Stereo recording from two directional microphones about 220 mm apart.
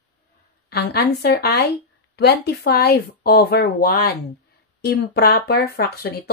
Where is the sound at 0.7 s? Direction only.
50° left (ahead or behind).